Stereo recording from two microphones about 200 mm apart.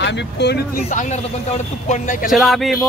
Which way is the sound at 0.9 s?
35° left (ahead or behind).